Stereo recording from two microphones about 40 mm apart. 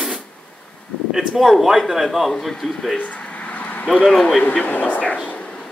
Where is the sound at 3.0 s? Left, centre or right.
Left.